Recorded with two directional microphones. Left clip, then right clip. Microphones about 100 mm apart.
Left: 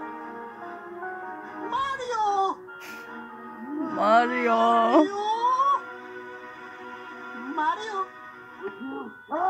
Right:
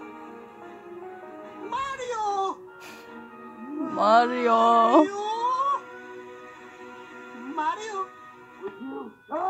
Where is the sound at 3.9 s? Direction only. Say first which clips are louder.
Right 1 dB; 40° right (ahead or behind).